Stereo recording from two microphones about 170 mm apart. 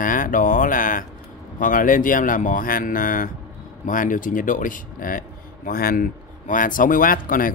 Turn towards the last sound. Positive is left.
turn(degrees=55)  # may be behind; listen again after turning